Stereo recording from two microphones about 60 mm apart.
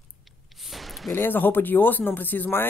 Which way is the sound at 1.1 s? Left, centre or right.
Left.